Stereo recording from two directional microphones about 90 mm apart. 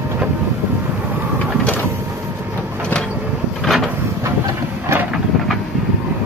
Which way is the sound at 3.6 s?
Centre (ahead or behind).